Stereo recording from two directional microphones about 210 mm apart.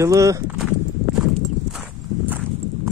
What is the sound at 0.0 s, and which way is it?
Speech, 15° right (ahead or behind).